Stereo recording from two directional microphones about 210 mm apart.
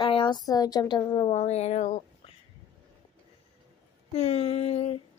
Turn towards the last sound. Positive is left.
turn(degrees=30)  # may be behind; listen again after turning